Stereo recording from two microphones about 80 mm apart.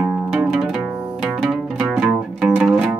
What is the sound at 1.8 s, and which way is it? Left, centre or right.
Music, centre.